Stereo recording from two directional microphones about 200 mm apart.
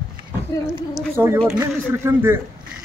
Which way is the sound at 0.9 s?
10° right (ahead or behind).